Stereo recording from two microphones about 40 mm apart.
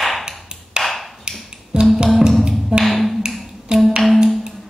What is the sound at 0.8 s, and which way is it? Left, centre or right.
Tap, centre.